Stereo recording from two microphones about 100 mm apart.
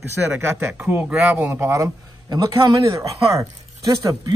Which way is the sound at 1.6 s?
35° right (ahead or behind).